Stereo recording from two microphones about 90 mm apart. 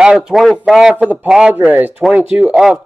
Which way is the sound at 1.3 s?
10° right (ahead or behind).